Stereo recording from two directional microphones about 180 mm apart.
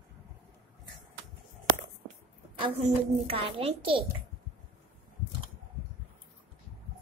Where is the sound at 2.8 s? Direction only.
30° right (ahead or behind).